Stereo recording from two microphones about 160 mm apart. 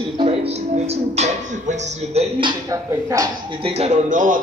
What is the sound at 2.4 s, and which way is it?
Speech, 20° right (ahead or behind).